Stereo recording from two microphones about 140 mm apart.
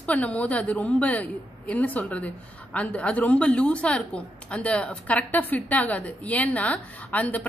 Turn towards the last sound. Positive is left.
turn(degrees=10)  # may be behind; listen again after turning